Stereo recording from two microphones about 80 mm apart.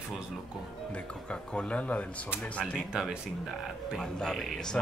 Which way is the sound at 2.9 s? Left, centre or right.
Centre.